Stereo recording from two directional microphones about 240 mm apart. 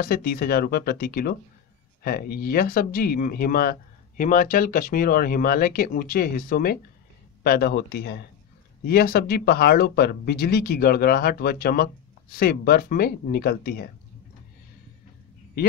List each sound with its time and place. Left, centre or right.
0.0 s speech: left